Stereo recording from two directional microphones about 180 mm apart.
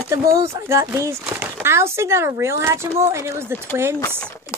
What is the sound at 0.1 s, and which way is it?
Speech, 15° right (ahead or behind).